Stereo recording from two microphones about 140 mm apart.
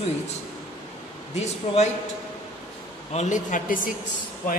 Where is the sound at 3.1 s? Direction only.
60° left (ahead or behind).